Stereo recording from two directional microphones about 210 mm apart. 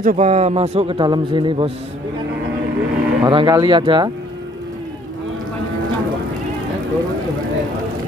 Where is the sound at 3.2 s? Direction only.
20° right (ahead or behind).